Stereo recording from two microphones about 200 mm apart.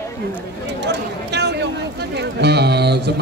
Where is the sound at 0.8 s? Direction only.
60° right (ahead or behind).